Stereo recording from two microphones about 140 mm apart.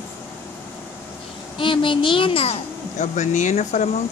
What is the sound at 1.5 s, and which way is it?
A child's voice, 35° left (ahead or behind).